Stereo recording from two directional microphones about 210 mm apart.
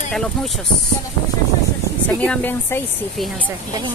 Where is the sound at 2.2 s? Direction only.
10° left (ahead or behind).